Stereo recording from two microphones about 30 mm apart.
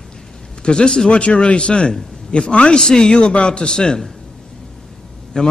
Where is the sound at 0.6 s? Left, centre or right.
Left.